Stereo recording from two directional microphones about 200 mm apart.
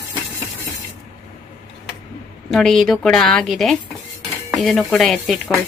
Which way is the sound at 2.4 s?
Centre (ahead or behind).